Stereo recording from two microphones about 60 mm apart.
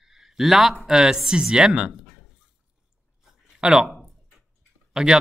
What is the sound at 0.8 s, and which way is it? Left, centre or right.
A man's voice, centre.